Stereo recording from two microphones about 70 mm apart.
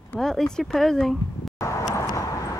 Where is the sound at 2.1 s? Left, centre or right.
Left.